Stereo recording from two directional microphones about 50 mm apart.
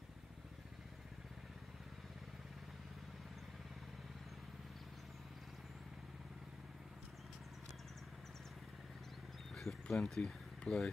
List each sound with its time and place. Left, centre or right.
9.6 s speech: centre